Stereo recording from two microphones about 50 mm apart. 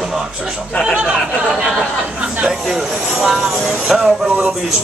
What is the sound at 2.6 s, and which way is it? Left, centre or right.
Snake, centre.